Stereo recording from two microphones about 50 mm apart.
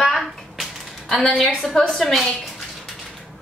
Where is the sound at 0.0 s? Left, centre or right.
Centre.